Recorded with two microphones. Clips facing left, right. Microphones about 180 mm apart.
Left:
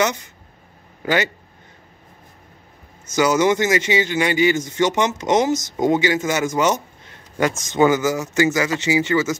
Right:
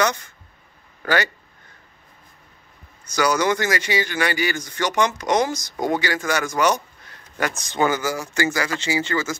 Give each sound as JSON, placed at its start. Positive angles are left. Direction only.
{"t": 0.0, "sound": "speech", "side_deg": 20}
{"t": 3.2, "sound": "speech", "side_deg": 20}